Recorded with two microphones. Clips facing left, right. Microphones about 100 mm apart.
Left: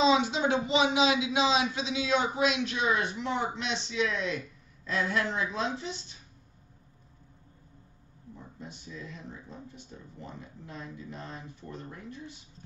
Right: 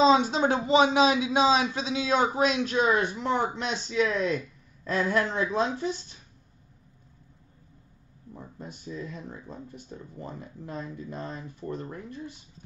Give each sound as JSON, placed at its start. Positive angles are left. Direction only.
{"t": 0.0, "sound": "a man's voice", "side_deg": -40}
{"t": 8.5, "sound": "speech", "side_deg": -45}